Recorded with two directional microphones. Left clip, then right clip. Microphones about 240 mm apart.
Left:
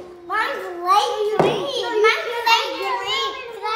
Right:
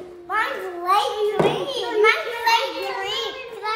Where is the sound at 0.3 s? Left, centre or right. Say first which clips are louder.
Left 1 dB; centre.